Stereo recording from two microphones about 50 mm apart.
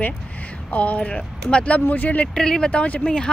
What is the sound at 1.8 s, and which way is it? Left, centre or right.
Speech, left.